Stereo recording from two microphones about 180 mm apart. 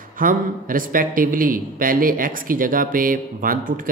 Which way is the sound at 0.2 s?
50° right (ahead or behind).